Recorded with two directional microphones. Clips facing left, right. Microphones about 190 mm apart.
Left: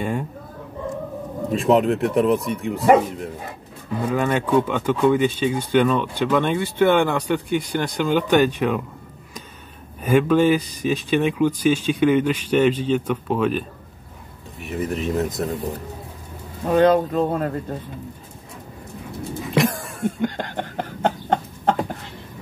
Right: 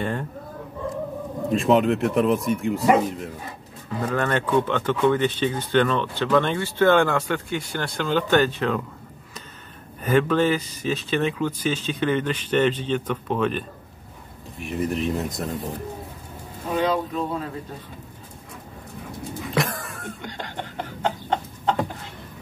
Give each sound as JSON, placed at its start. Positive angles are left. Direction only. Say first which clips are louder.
{"t": 0.0, "sound": "speech", "louder": "left 2 dB", "side_deg": 10}
{"t": 1.5, "sound": "speech", "louder": "left 1 dB", "side_deg": 0}
{"t": 4.1, "sound": "speech", "louder": "left 3 dB", "side_deg": 10}
{"t": 10.0, "sound": "speech", "louder": "left 3 dB", "side_deg": 10}
{"t": 16.7, "sound": "speech", "louder": "left 7 dB", "side_deg": 60}
{"t": 19.5, "sound": "cough", "louder": "left 6 dB", "side_deg": 25}
{"t": 20.2, "sound": "a sound", "louder": "left 9 dB", "side_deg": 55}